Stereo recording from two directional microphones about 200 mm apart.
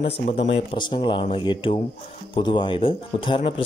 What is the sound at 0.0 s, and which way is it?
Speech, 30° left (ahead or behind).